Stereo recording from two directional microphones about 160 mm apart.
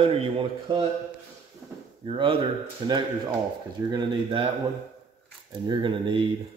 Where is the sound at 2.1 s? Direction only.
35° right (ahead or behind).